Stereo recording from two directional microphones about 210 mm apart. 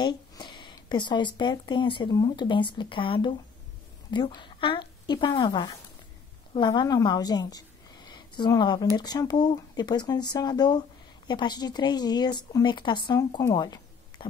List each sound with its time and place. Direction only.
0.0 s a woman's voice: 20° left (ahead or behind)